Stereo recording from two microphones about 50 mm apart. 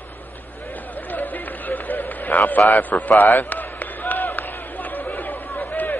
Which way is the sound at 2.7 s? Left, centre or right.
Left.